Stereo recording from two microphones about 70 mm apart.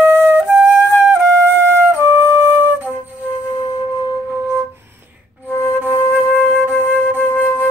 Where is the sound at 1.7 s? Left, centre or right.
Right.